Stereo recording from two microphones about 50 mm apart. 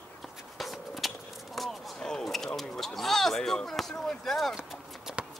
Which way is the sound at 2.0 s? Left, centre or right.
Centre.